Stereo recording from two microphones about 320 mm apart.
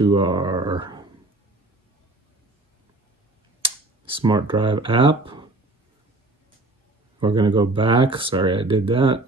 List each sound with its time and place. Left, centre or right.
0.0 s speech: centre
3.6 s speech: centre
7.2 s speech: centre